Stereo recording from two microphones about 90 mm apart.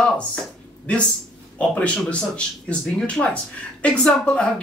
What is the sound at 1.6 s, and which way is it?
Speech, 15° left (ahead or behind).